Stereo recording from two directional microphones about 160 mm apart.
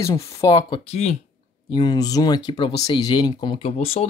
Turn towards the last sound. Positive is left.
turn(degrees=40)  # may be behind; listen again after turning